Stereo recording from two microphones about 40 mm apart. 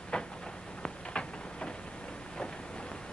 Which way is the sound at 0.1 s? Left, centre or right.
Left.